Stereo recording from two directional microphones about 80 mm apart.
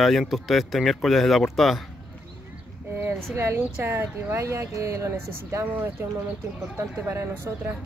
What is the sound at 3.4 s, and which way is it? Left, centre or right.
Speech, right.